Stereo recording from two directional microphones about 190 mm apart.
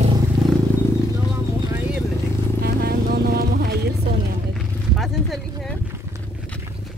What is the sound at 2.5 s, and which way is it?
Music, 55° right (ahead or behind).